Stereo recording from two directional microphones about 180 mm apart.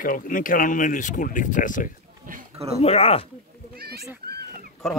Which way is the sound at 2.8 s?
35° left (ahead or behind).